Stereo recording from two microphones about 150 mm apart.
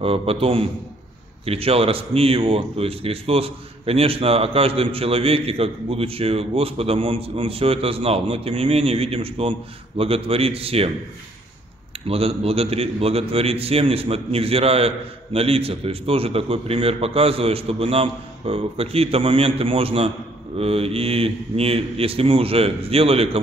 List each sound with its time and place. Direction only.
0.0 s a man's voice: 40° right (ahead or behind)
12.1 s a man's voice: 40° right (ahead or behind)